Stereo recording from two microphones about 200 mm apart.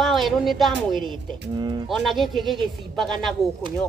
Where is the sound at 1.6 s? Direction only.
20° right (ahead or behind).